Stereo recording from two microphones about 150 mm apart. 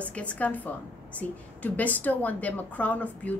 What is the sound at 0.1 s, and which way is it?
A woman's voice, 10° left (ahead or behind).